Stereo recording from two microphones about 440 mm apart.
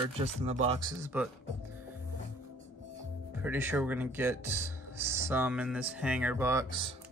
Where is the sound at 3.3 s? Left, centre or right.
Centre.